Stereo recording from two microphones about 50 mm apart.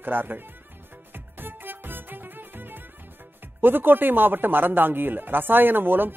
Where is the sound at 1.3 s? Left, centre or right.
Right.